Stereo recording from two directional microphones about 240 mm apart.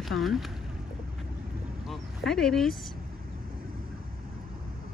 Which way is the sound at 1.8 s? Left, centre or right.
Centre.